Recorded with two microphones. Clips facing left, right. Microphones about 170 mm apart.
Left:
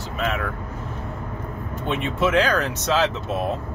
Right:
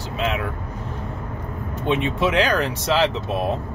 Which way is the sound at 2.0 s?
15° right (ahead or behind).